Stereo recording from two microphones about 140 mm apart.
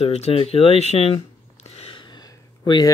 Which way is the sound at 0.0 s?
45° left (ahead or behind).